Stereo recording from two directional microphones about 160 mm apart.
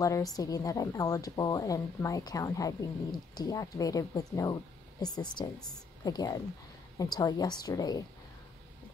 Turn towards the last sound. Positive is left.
turn(degrees=25)  # may be behind; listen again after turning